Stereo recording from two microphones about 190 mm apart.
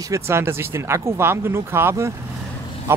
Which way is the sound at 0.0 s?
15° right (ahead or behind).